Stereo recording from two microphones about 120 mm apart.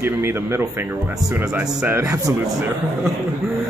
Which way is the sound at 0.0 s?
20° right (ahead or behind).